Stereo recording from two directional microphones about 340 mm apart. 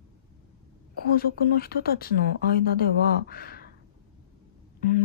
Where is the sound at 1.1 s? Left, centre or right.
Left.